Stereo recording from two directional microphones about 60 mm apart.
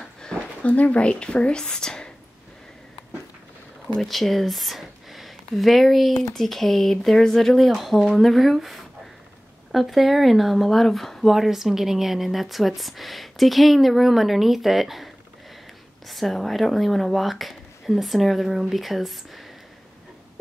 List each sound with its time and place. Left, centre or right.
0.6 s speech: left
4.0 s speech: centre
16.1 s speech: centre